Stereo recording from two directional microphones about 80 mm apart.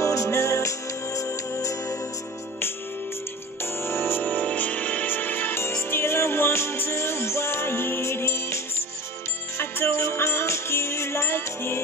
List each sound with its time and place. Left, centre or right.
0.0 s music: left
3.6 s music: left